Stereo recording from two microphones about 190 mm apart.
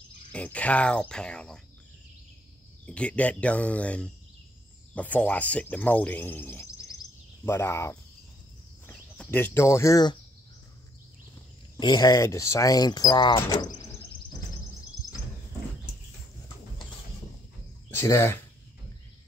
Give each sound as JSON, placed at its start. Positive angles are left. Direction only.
{"t": 0.3, "sound": "speech", "side_deg": 5}
{"t": 2.9, "sound": "speech", "side_deg": 5}
{"t": 11.8, "sound": "speech", "side_deg": 20}
{"t": 17.8, "sound": "a sound", "side_deg": 15}